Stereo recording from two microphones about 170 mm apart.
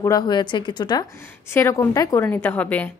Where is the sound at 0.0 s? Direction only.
20° left (ahead or behind).